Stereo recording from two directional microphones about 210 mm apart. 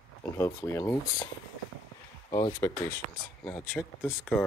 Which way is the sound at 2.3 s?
15° left (ahead or behind).